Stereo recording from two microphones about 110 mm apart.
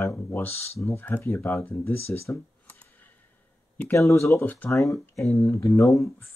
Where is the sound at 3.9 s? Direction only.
25° left (ahead or behind).